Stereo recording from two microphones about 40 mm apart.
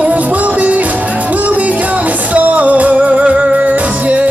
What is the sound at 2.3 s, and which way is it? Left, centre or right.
Music, right.